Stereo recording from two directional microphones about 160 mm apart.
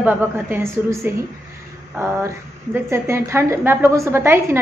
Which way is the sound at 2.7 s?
15° right (ahead or behind).